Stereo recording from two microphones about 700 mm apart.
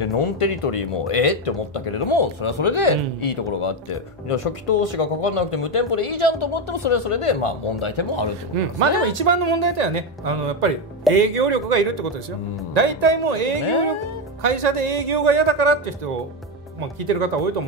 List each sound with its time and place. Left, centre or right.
0.0 s speech: left
8.5 s speech: right
9.0 s speech: right
17.0 s speech: right